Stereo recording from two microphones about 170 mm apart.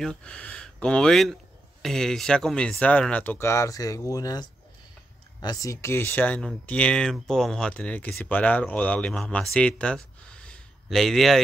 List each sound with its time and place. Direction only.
0.0 s speech: 5° left (ahead or behind)